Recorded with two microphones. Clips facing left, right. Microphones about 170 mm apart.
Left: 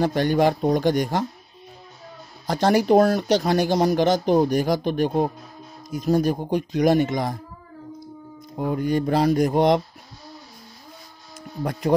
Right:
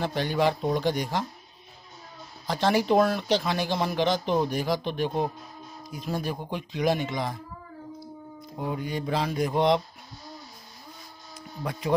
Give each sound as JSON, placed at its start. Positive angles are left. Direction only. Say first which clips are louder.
{"t": 0.0, "sound": "speech", "louder": "left 6 dB", "side_deg": 45}
{"t": 2.4, "sound": "speech", "louder": "left 5 dB", "side_deg": 45}
{"t": 8.5, "sound": "speech", "louder": "left 8 dB", "side_deg": 50}
{"t": 11.3, "sound": "speech", "louder": "left 6 dB", "side_deg": 45}